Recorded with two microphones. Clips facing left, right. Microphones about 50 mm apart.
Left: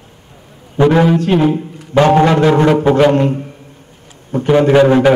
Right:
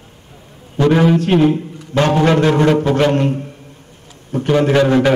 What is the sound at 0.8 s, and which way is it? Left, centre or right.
Speech, centre.